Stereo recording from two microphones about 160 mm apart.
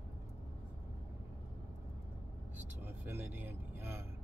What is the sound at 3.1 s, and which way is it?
Speech, 15° right (ahead or behind).